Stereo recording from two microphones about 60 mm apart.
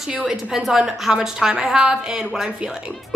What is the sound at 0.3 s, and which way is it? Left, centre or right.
A woman's voice, centre.